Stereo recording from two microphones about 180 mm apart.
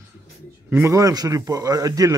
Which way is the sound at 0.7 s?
15° right (ahead or behind).